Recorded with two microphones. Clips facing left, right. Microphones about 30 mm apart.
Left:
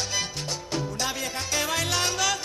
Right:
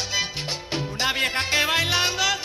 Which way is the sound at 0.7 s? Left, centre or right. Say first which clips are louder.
Right 6 dB; right.